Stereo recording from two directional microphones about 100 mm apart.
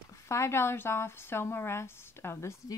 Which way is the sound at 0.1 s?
30° left (ahead or behind).